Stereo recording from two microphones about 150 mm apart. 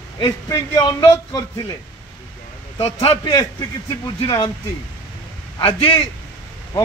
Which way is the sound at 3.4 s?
20° left (ahead or behind).